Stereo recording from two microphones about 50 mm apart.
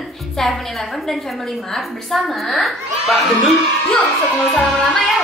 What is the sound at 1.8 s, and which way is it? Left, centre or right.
A woman's voice, centre.